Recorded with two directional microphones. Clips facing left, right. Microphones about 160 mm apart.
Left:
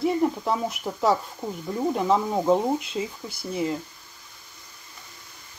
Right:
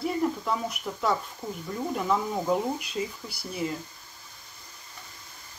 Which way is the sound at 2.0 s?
25° left (ahead or behind).